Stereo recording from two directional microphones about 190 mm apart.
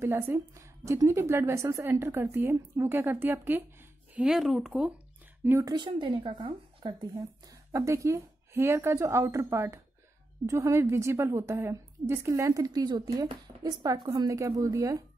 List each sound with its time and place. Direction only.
0.0 s a woman's voice: 15° right (ahead or behind)
5.4 s a woman's voice: 15° right (ahead or behind)